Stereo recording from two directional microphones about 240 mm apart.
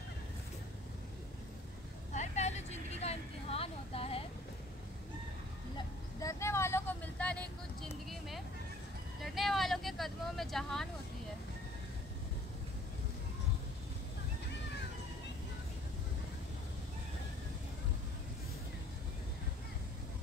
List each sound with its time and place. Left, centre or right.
2.1 s vehicle: left
5.8 s vehicle: centre
9.2 s vehicle: centre